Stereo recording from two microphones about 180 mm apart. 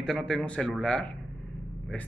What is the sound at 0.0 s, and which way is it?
A man's voice, centre (ahead or behind).